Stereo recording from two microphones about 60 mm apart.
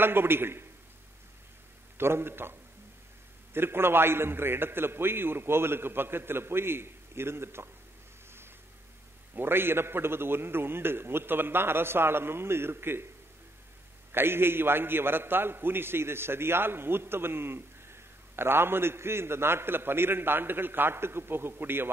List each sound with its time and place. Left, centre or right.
0.0 s a man's voice: right
2.0 s a man's voice: right
3.5 s a man's voice: right
9.3 s a man's voice: right
14.1 s a man's voice: right